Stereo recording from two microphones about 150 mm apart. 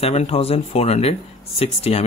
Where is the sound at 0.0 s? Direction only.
45° left (ahead or behind).